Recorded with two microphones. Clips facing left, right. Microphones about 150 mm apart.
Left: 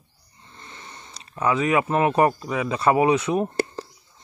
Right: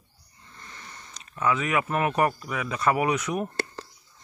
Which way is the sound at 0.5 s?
25° left (ahead or behind).